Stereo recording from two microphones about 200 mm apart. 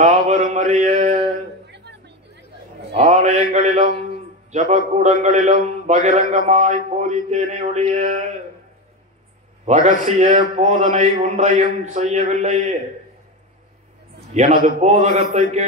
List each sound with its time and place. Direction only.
0.0 s a man's voice: 35° right (ahead or behind)
1.7 s a sound: 60° right (ahead or behind)
2.9 s a man's voice: 35° right (ahead or behind)
9.7 s a man's voice: 35° right (ahead or behind)
14.3 s a man's voice: 35° right (ahead or behind)